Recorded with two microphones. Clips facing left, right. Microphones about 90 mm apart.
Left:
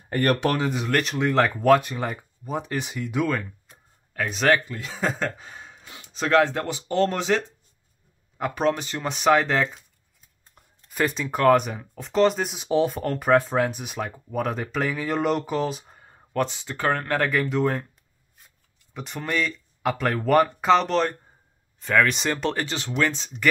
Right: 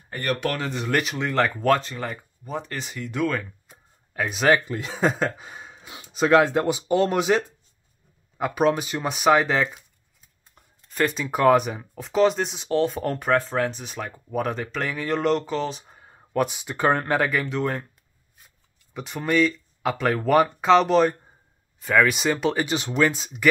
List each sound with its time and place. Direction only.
0.6 s speech: 10° left (ahead or behind)
0.8 s speech: 5° right (ahead or behind)
3.7 s a sound: 10° right (ahead or behind)
4.8 s speech: 25° right (ahead or behind)
5.2 s speech: 10° right (ahead or behind)
10.5 s a sound: centre (ahead or behind)
11.2 s speech: 5° right (ahead or behind)
17.2 s speech: centre (ahead or behind)
18.9 s speech: centre (ahead or behind)